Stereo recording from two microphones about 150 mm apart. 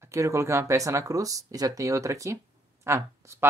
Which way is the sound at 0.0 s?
20° right (ahead or behind).